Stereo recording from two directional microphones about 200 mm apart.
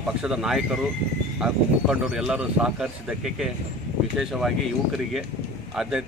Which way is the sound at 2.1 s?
5° right (ahead or behind).